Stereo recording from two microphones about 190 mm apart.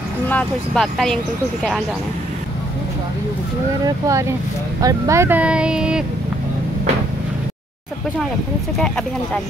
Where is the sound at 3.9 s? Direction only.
15° right (ahead or behind).